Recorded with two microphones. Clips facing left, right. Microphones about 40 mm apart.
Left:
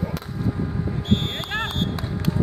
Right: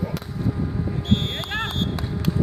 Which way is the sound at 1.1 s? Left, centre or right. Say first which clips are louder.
Even; centre.